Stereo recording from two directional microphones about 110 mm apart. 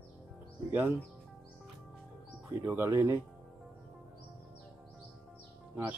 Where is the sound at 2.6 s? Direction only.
15° right (ahead or behind).